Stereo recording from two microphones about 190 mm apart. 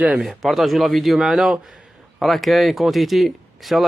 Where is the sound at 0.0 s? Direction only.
Centre (ahead or behind).